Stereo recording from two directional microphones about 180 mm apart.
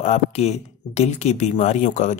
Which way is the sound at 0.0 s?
40° left (ahead or behind).